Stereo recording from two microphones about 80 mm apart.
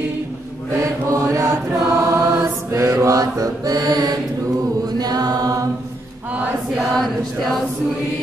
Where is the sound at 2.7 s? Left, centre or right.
Right.